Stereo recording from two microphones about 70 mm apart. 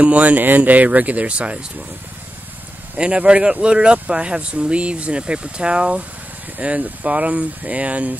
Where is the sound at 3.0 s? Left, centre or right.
Centre.